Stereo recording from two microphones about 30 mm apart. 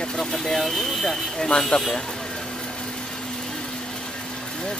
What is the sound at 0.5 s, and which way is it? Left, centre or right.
Speech, centre.